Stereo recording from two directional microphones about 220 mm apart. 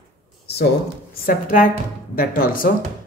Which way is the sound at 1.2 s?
40° left (ahead or behind).